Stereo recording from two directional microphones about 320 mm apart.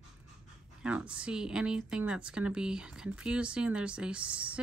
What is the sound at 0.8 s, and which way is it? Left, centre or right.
Speech, centre.